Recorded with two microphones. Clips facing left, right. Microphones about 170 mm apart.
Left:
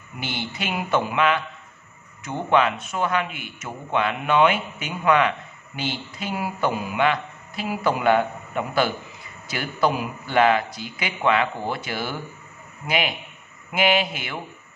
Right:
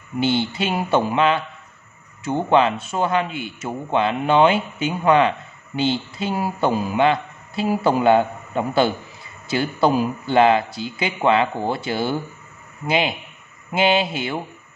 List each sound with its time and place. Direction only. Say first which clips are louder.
0.2 s speech: right 10 dB; 30° right (ahead or behind)